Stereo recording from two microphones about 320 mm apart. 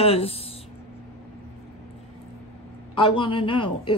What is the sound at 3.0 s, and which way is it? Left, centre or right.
Speech, centre.